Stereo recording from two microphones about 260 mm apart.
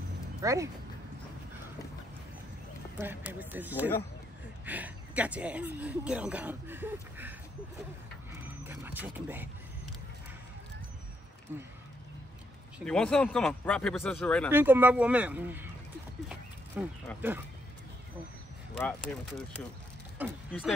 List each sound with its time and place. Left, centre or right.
0.4 s speech: centre
3.0 s speech: centre
8.4 s a sound: centre
11.5 s speech: centre
12.7 s speech: centre
14.5 s speech: centre
16.8 s speech: centre
18.8 s speech: centre